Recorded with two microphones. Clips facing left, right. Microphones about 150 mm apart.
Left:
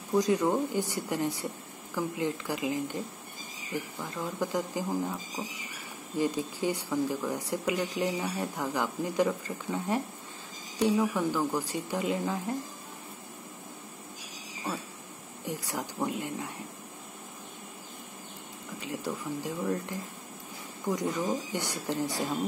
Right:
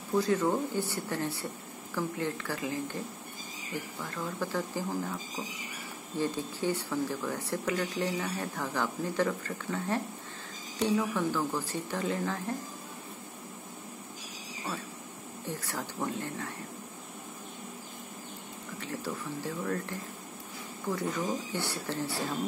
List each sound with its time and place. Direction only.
0.2 s speech: 15° left (ahead or behind)
4.0 s speech: 15° left (ahead or behind)
15.4 s speech: 15° left (ahead or behind)
18.8 s speech: 15° left (ahead or behind)